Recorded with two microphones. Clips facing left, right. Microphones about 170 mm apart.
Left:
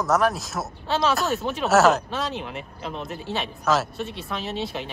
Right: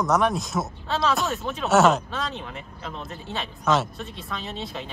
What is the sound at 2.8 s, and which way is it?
Speech, 15° left (ahead or behind).